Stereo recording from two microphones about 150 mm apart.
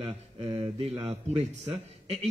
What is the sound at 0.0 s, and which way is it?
A man's voice, 40° right (ahead or behind).